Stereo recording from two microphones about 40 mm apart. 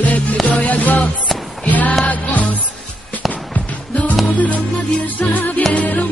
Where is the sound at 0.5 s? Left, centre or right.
Left.